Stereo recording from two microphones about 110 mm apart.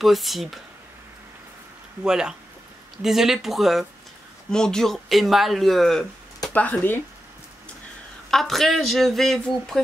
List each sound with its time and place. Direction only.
0.0 s speech: centre (ahead or behind)
2.0 s speech: 5° right (ahead or behind)
6.5 s speech: 15° left (ahead or behind)
8.3 s speech: 5° left (ahead or behind)